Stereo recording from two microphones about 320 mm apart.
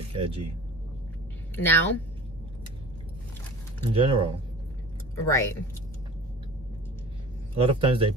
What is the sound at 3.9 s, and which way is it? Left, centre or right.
Speech, centre.